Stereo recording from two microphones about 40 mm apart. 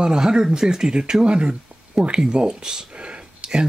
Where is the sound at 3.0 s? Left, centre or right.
Right.